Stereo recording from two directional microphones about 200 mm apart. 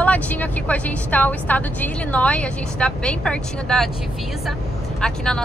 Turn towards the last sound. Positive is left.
turn(degrees=5)  # may be behind; listen again after turning